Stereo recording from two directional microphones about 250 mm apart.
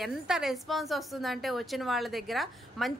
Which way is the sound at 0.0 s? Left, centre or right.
Centre.